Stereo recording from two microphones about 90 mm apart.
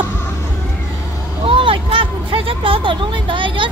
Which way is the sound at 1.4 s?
75° right (ahead or behind).